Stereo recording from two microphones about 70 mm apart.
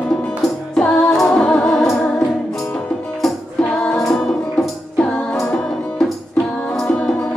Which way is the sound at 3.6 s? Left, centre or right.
Left.